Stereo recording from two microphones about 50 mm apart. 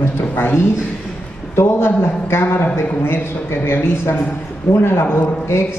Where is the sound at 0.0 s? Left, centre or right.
Left.